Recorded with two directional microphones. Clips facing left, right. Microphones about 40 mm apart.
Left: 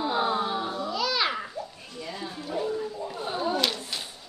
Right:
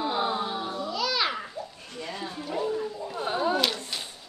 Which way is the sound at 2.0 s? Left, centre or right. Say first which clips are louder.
Right 1 dB; right.